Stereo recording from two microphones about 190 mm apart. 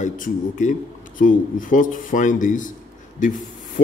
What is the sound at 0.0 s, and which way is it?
A man's voice, 40° left (ahead or behind).